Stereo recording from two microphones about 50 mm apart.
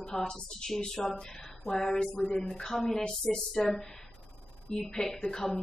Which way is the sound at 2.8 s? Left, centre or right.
Centre.